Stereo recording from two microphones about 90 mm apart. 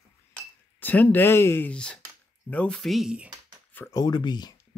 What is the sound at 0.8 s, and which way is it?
Speech, 20° left (ahead or behind).